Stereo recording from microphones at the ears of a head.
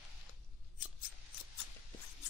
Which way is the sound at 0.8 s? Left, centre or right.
Left.